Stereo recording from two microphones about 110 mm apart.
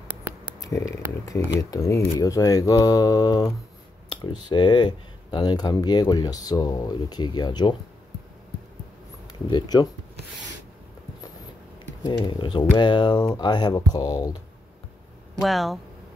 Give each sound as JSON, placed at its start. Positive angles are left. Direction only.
{"t": 0.1, "sound": "a sound", "side_deg": -20}
{"t": 0.6, "sound": "speech", "side_deg": 30}
{"t": 9.3, "sound": "speech", "side_deg": 40}
{"t": 12.0, "sound": "speech", "side_deg": 40}
{"t": 15.4, "sound": "speech", "side_deg": 0}